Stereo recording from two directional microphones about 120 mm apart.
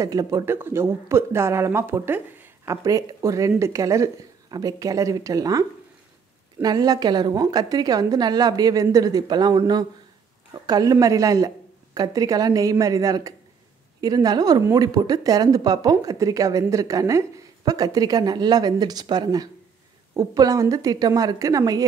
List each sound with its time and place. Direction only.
0.0 s a woman's voice: 30° right (ahead or behind)